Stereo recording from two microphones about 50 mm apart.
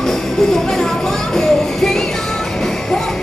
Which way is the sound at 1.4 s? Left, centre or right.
Centre.